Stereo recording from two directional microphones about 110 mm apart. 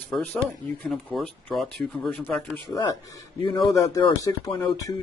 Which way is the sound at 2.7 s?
35° left (ahead or behind).